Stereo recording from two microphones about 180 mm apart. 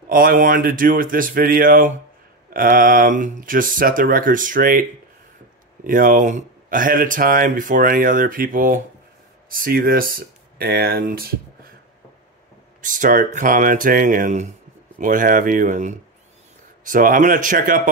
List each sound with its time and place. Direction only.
0.1 s speech: 50° right (ahead or behind)
5.9 s speech: 50° right (ahead or behind)
12.8 s speech: 45° right (ahead or behind)